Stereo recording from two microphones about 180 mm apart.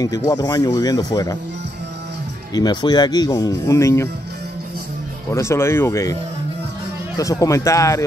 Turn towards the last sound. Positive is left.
turn(degrees=15)  # may be behind; listen again after turning